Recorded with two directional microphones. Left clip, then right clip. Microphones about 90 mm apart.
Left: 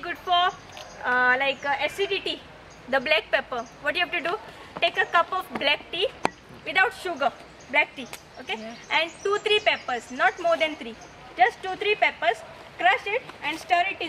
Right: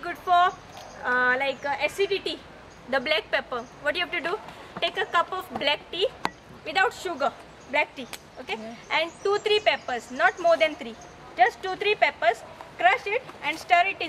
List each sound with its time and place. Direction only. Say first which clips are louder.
0.0 s a sound: right 2 dB; 5° right (ahead or behind)
2.9 s a woman's voice: left 2 dB; 20° right (ahead or behind); by 10.9 s 70° right (ahead or behind)
11.3 s speech: even; 90° right; by 13.6 s 75° right (ahead or behind)
13.7 s a woman's voice: right 2 dB; 90° right